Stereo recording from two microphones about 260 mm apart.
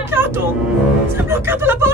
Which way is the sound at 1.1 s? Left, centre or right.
Centre.